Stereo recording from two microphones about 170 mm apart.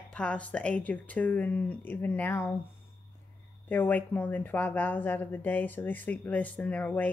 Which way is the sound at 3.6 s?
10° left (ahead or behind).